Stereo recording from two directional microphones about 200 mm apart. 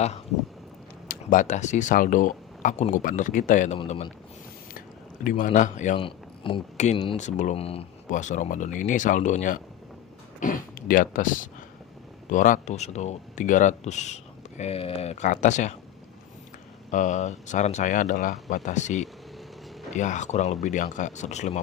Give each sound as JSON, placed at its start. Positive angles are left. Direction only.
{"t": 1.0, "sound": "speech", "side_deg": 40}
{"t": 5.9, "sound": "speech", "side_deg": 25}
{"t": 16.9, "sound": "speech", "side_deg": 35}